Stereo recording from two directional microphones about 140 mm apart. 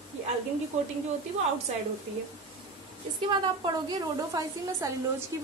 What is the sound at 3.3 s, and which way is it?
A woman's voice, 30° right (ahead or behind).